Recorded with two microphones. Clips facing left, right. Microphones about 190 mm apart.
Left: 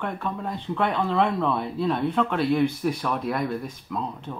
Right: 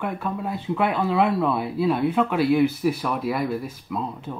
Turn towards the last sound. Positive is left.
turn(degrees=-5)  # may be behind; listen again after turning